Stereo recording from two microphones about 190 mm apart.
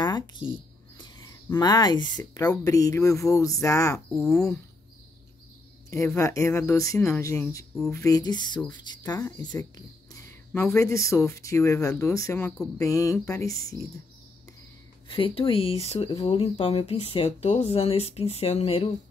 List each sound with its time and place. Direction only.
0.0 s a sound: 20° left (ahead or behind)
0.9 s speech: 20° left (ahead or behind)
4.2 s speech: 5° left (ahead or behind)
5.9 s speech: 15° left (ahead or behind)
15.0 s speech: 30° left (ahead or behind)